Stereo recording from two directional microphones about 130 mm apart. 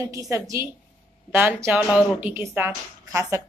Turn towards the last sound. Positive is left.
turn(degrees=-20)  # may be behind; listen again after turning